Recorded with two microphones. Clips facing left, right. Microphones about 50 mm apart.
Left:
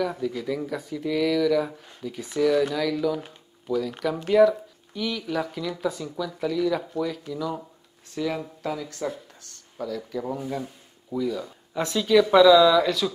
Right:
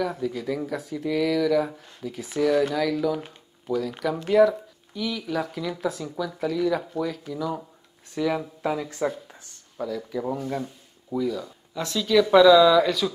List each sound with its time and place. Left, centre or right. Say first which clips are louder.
0.0 s speech: even; centre
8.6 s speech: right 4 dB; right; by 11.5 s centre
11.7 s speech: left 1 dB; centre